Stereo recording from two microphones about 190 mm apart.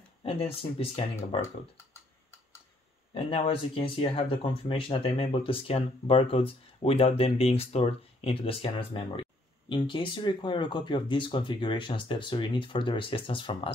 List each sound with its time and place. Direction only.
0.2 s speech: 30° left (ahead or behind)
3.2 s speech: 30° left (ahead or behind)